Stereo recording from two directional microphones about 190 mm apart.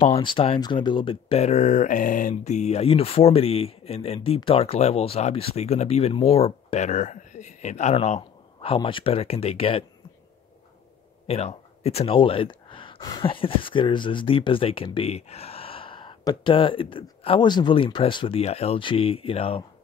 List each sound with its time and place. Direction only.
0.0 s speech: 30° left (ahead or behind)
11.2 s speech: 35° left (ahead or behind)